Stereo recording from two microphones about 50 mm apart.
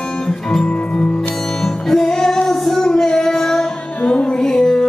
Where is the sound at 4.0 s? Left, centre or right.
Centre.